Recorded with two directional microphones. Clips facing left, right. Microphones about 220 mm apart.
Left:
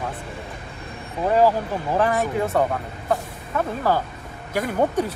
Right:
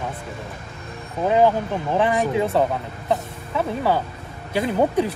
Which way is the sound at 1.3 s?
20° right (ahead or behind).